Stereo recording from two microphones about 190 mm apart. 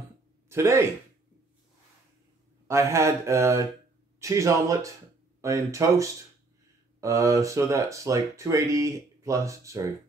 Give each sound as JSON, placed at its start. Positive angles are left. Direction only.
{"t": 0.5, "sound": "speech", "side_deg": -15}
{"t": 2.7, "sound": "speech", "side_deg": -15}